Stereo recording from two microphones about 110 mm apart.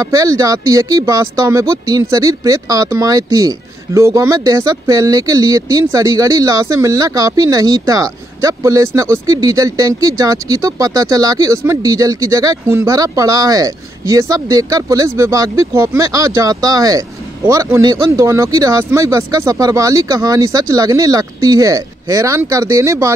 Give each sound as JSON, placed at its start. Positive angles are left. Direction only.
{"t": 0.0, "sound": "speech", "side_deg": -30}